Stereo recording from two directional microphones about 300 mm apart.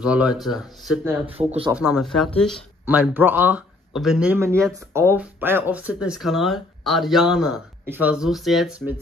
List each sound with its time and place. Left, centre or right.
0.0 s speech: centre
1.4 s speech: centre
1.7 s speech: centre